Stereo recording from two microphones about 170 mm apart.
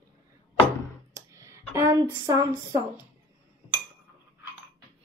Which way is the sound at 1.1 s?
20° right (ahead or behind).